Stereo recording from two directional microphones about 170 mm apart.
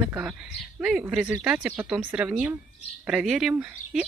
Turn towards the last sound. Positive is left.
turn(degrees=-5)  # may be behind; listen again after turning